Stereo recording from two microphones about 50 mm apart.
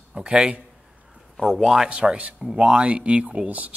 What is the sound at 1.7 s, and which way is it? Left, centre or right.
Speech, centre.